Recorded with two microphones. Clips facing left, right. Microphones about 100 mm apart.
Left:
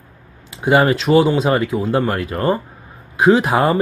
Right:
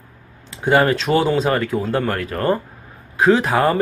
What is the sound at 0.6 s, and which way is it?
Speech, 15° left (ahead or behind).